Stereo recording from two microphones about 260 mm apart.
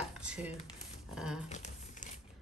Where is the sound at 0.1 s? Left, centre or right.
Centre.